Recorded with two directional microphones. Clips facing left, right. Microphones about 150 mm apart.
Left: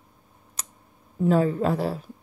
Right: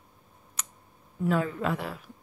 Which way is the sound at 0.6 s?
35° left (ahead or behind).